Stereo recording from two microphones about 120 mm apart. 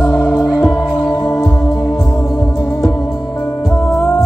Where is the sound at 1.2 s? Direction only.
25° left (ahead or behind).